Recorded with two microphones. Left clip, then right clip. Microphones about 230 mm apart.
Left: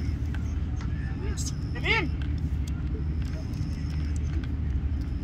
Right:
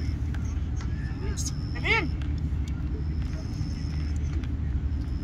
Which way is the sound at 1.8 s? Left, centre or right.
Right.